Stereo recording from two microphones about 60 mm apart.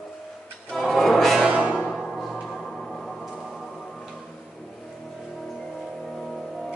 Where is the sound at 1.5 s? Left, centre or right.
Centre.